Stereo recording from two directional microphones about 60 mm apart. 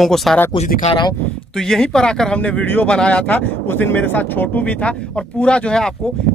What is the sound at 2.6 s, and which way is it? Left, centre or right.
Speech, left.